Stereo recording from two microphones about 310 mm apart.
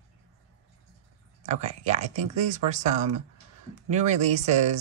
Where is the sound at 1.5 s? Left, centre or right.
Right.